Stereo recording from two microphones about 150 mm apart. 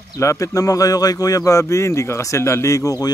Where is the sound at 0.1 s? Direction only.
20° left (ahead or behind).